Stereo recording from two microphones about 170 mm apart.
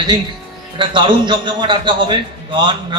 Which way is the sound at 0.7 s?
30° right (ahead or behind).